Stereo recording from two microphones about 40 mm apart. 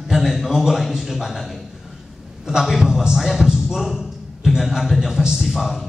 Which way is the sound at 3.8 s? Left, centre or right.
Centre.